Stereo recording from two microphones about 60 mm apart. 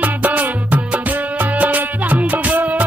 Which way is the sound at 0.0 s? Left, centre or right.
Right.